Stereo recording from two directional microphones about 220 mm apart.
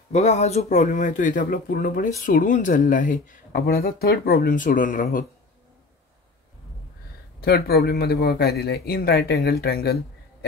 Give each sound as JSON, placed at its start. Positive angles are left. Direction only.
{"t": 0.1, "sound": "speech", "side_deg": 30}
{"t": 7.3, "sound": "a man's voice", "side_deg": 45}